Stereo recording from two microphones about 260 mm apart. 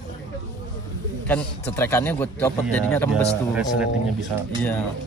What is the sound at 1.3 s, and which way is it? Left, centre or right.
Speech, centre.